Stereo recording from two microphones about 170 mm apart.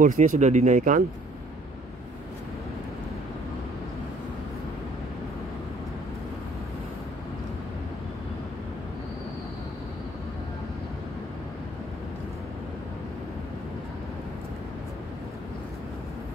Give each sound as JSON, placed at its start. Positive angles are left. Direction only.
{"t": 0.0, "sound": "speech", "side_deg": -50}